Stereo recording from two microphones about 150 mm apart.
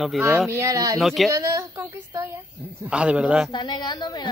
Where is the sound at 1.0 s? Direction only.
Centre (ahead or behind).